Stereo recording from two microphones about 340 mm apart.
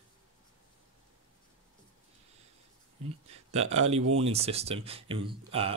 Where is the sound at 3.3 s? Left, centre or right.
Centre.